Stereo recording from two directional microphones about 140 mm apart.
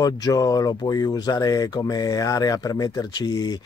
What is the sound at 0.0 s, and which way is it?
Speech, 25° left (ahead or behind).